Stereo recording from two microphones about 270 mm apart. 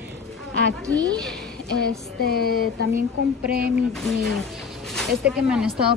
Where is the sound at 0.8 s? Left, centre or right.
Centre.